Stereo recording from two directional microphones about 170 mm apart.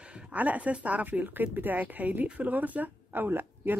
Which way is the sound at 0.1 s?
10° right (ahead or behind).